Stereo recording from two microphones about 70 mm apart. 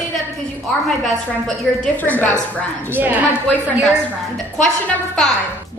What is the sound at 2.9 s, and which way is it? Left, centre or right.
Speech, right.